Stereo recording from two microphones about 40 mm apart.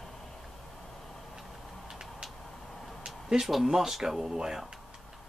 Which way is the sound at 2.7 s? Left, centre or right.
Centre.